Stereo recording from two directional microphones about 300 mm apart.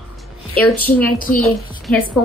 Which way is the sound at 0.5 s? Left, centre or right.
Centre.